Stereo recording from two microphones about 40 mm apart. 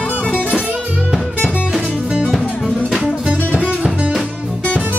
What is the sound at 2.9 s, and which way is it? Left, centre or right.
Music, centre.